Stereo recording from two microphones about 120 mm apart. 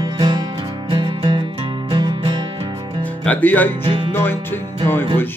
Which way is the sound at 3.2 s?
15° left (ahead or behind).